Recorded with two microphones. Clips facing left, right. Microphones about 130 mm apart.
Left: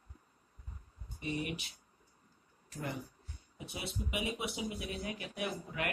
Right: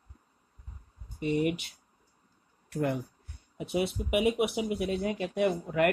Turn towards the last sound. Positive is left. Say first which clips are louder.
# right 12 dB
turn(degrees=-60)  # may be behind; listen again after turning